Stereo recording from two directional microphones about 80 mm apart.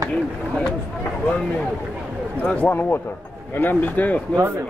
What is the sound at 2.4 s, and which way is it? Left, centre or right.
A man's voice, centre.